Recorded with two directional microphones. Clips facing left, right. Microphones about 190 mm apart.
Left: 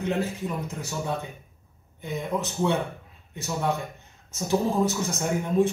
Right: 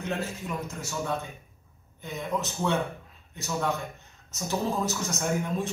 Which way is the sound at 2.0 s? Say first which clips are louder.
Left 3 dB; 15° left (ahead or behind).